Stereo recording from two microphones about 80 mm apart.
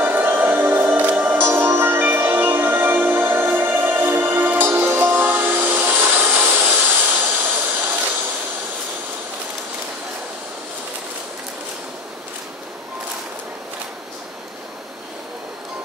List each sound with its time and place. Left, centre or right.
0.0 s music: right